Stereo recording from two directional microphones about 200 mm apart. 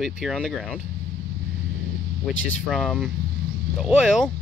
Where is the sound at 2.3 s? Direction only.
75° left (ahead or behind).